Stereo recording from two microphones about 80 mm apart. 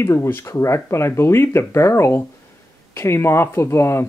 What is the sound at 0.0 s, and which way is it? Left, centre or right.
Speech, left.